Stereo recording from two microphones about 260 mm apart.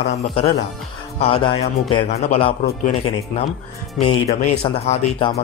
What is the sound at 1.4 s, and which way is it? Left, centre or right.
Speech, left.